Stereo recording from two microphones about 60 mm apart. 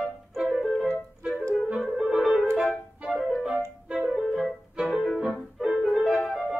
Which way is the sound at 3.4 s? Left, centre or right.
Centre.